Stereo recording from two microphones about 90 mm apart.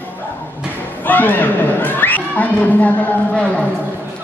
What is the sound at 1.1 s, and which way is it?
A woman's voice, 20° left (ahead or behind).